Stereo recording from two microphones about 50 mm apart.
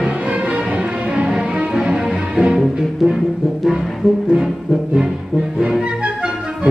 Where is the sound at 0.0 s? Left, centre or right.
Right; by 3.2 s centre.